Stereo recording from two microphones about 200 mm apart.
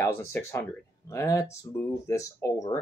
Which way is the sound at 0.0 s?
15° left (ahead or behind).